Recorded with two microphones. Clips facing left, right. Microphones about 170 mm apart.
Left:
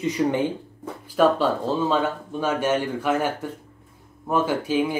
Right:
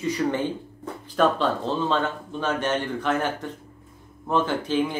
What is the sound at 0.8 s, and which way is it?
Speech, 10° left (ahead or behind).